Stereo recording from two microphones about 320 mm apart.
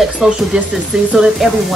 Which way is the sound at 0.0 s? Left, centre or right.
Centre.